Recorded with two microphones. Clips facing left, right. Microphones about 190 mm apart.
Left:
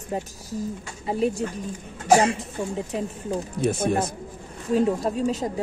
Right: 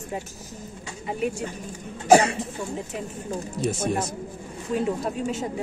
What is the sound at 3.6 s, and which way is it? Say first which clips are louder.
Speech: left 3 dB; 55° left (ahead or behind).